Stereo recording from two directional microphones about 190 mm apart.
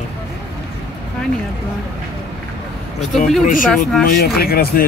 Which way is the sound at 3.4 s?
45° left (ahead or behind).